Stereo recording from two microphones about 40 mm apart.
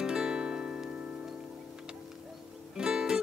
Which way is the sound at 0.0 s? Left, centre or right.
Centre.